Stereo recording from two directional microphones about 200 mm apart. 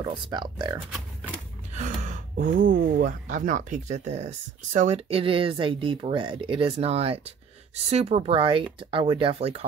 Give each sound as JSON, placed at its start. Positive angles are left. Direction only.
{"t": 0.0, "sound": "speech", "side_deg": -20}
{"t": 1.7, "sound": "gasp", "side_deg": -40}
{"t": 2.6, "sound": "speech", "side_deg": -45}